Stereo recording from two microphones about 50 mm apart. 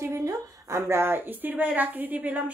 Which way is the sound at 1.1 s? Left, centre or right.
Right.